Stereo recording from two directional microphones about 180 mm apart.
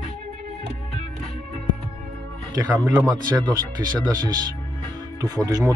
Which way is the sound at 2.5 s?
20° right (ahead or behind).